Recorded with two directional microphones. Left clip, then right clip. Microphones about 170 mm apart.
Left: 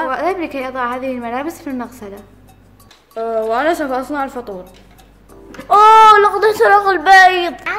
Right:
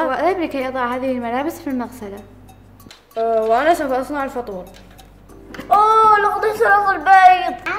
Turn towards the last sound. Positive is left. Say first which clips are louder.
# right 2 dB
turn(degrees=55)  # may be behind; listen again after turning